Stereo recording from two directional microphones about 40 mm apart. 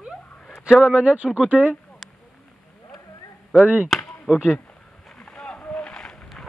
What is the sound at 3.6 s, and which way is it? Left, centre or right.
Speech, right.